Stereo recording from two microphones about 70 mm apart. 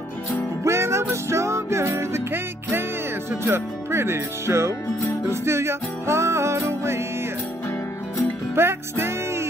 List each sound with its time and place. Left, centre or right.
0.7 s music: right
3.3 s speech: right
5.3 s music: right
8.5 s music: right